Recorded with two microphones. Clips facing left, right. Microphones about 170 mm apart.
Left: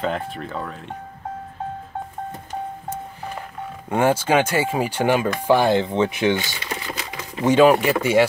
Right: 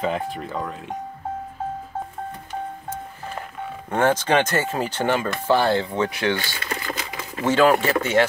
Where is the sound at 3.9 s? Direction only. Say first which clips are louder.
Left 1 dB; 10° left (ahead or behind).